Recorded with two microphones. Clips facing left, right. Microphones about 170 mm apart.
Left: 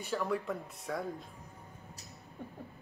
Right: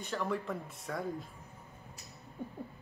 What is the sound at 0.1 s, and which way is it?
Speech, centre (ahead or behind).